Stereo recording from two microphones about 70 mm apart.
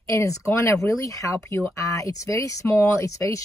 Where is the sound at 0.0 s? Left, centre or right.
Left.